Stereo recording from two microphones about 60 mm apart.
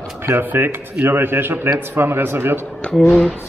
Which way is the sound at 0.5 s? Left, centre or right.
Right.